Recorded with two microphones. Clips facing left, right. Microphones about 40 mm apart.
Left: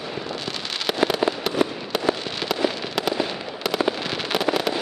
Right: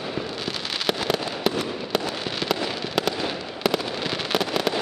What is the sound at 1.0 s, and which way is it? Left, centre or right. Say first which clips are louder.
Fireworks: left 1 dB; centre.